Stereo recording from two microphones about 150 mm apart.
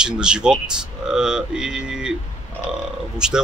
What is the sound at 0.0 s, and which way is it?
Speech, 5° right (ahead or behind).